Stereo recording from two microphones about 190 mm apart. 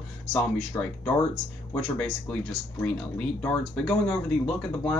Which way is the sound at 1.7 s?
5° left (ahead or behind).